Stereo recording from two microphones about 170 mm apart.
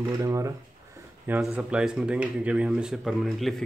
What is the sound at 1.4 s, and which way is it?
Speech, 5° right (ahead or behind).